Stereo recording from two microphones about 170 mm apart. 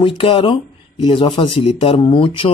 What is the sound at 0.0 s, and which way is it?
Speech, 30° left (ahead or behind).